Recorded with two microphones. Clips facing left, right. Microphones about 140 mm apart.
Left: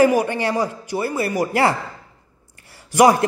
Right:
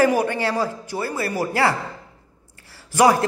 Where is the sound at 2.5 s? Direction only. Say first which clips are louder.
Left 4 dB; 20° left (ahead or behind).